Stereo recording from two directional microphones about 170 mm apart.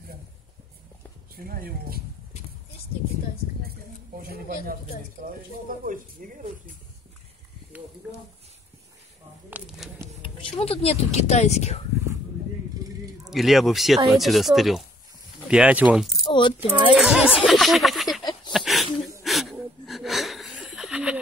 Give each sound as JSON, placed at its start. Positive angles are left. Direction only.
{"t": 1.3, "sound": "speech", "side_deg": -60}
{"t": 5.2, "sound": "speech", "side_deg": -55}
{"t": 9.5, "sound": "speech", "side_deg": 0}
{"t": 10.4, "sound": "a woman's voice", "side_deg": 35}
{"t": 13.2, "sound": "speech", "side_deg": 0}
{"t": 16.3, "sound": "a sound", "side_deg": 30}
{"t": 16.6, "sound": "speech", "side_deg": -5}
{"t": 18.5, "sound": "a sound", "side_deg": 0}